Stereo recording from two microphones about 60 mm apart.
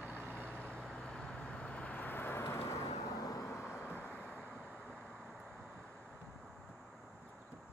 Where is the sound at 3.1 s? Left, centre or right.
Left.